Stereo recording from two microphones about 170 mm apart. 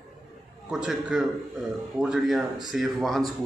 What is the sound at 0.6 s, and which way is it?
A man's voice, 5° right (ahead or behind).